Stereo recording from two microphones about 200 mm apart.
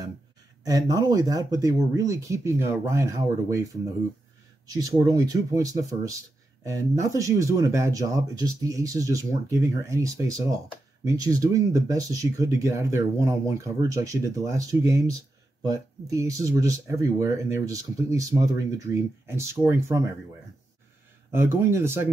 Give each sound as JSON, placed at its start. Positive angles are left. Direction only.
{"t": 0.7, "sound": "speech", "side_deg": -20}
{"t": 4.6, "sound": "speech", "side_deg": -20}
{"t": 7.2, "sound": "speech", "side_deg": -15}
{"t": 21.3, "sound": "speech", "side_deg": -10}